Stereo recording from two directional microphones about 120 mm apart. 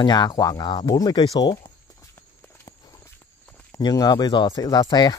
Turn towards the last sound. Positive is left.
turn(degrees=35)  # may be behind; listen again after turning